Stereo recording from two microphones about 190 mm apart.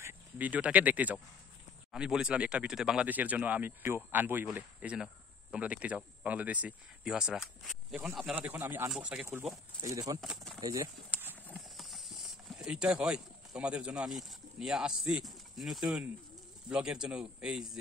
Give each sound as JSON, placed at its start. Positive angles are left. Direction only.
{"t": 0.0, "sound": "a man's voice", "side_deg": -10}
{"t": 9.8, "sound": "speech", "side_deg": -20}
{"t": 10.2, "sound": "a man's voice", "side_deg": 0}
{"t": 10.6, "sound": "speech", "side_deg": -20}
{"t": 11.1, "sound": "clip-clop", "side_deg": -10}
{"t": 11.5, "sound": "a man's voice", "side_deg": 0}